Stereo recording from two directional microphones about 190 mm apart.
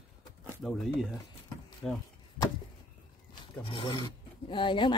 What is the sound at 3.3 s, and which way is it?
Speech, 25° left (ahead or behind).